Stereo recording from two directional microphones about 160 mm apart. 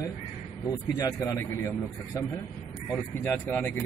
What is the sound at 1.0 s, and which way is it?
A man's voice, 20° left (ahead or behind).